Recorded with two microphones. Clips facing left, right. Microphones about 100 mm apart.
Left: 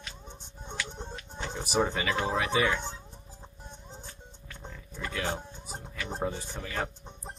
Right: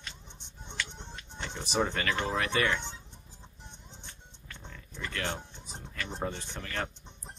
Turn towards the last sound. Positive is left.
turn(degrees=5)  # may be behind; listen again after turning